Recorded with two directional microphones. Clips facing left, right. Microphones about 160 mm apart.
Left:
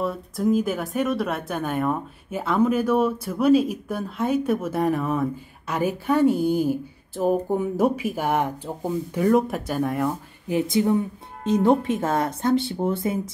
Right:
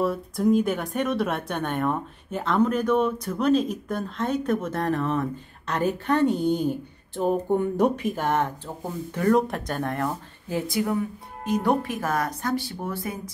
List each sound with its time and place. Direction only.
0.0 s speech: centre (ahead or behind)
10.5 s speech: 25° left (ahead or behind)